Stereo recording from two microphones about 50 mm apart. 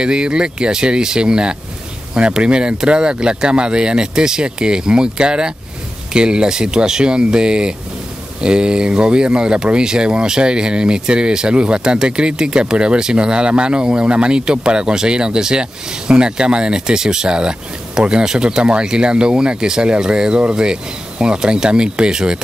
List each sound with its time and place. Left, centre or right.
0.0 s speech: centre